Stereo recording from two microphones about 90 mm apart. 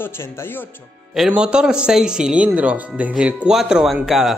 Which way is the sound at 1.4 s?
10° right (ahead or behind).